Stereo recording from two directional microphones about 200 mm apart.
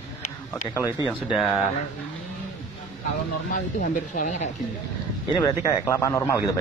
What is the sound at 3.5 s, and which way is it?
Speech, 40° left (ahead or behind).